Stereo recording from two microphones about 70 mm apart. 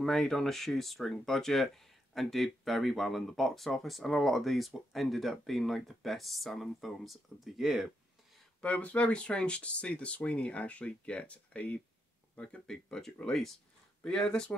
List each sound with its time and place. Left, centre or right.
0.0 s speech: centre
8.5 s speech: centre